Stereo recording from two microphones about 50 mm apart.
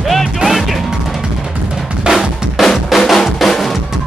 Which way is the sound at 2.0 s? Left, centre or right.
Centre.